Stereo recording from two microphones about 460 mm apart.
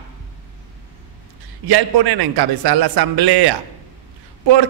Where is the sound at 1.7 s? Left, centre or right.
Right.